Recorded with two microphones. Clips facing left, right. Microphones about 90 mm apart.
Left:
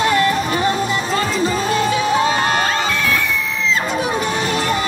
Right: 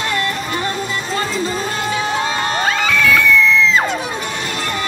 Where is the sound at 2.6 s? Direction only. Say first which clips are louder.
Right 3 dB; 90° right.